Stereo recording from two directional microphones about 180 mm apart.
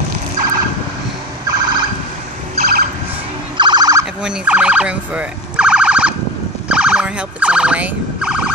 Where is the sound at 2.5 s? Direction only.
60° right (ahead or behind).